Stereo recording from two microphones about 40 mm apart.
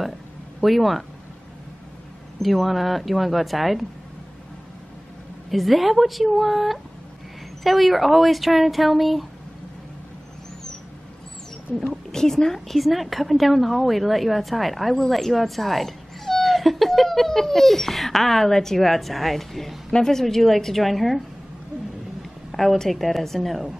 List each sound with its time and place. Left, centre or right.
0.6 s speech: centre
2.4 s a woman's voice: centre
5.5 s a woman's voice: centre
11.7 s speech: left
12.1 s a woman's voice: centre
22.5 s a sound: centre
22.8 s a woman's voice: centre